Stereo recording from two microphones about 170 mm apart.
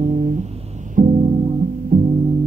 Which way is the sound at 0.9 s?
45° right (ahead or behind).